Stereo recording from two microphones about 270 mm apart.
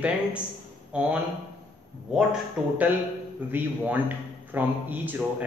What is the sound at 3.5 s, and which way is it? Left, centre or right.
A man's voice, centre.